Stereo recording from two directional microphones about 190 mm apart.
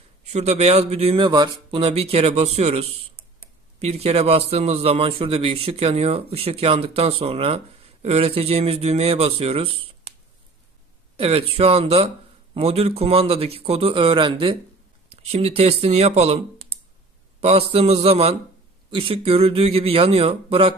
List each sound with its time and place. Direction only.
0.2 s a man's voice: 35° right (ahead or behind)
11.1 s a man's voice: 30° right (ahead or behind)